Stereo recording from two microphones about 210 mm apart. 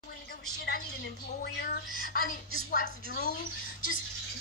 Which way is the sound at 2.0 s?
45° left (ahead or behind).